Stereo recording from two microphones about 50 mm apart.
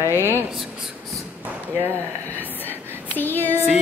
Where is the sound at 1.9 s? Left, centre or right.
Left.